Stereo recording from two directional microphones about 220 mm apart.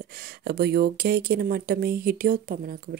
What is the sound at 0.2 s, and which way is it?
Speech, 45° right (ahead or behind).